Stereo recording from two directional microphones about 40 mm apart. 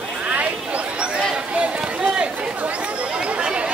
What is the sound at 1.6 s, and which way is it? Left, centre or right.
Chatter, right.